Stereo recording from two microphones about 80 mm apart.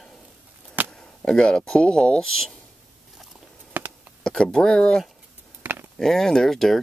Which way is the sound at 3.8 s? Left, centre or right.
Right.